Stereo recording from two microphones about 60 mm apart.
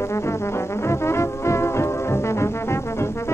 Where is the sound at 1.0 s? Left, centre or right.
Left.